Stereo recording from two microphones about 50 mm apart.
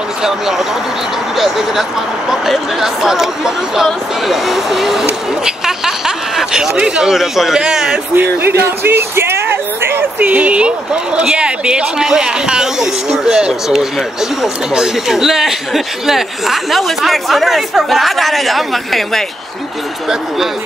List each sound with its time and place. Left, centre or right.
0.2 s speech: centre
8.2 s speech: right
8.6 s a sound: right
10.1 s speech: right; by 19.2 s centre